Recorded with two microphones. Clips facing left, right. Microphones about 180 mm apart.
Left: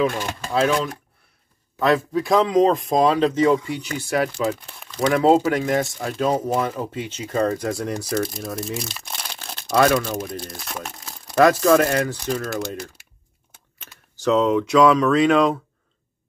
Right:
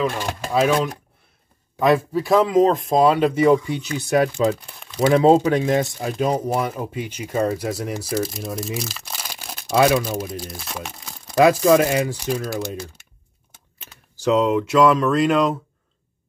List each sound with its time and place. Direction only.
0.5 s speech: 10° right (ahead or behind)
4.6 s crumpling: 5° right (ahead or behind)
5.0 s speech: 20° right (ahead or behind); by 11.3 s centre (ahead or behind)
11.3 s speech: 15° right (ahead or behind)
14.1 s speech: 10° right (ahead or behind)